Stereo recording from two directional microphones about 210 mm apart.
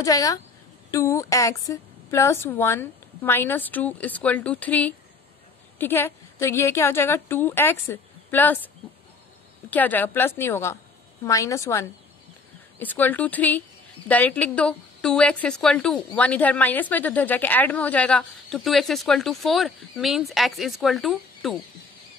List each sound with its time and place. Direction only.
0.0 s a woman's voice: 15° left (ahead or behind)
9.7 s a woman's voice: 10° left (ahead or behind)